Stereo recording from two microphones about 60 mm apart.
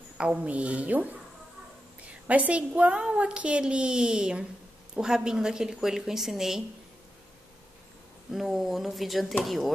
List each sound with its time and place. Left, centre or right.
0.2 s a woman's voice: centre
2.2 s a woman's voice: right; by 6.6 s centre
8.3 s speech: centre